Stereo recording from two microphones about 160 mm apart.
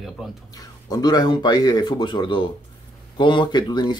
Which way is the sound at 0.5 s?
25° left (ahead or behind).